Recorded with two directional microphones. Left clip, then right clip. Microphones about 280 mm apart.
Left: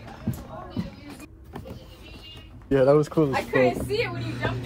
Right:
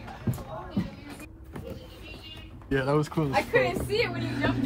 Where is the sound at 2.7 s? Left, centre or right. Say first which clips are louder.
Left 8 dB; centre.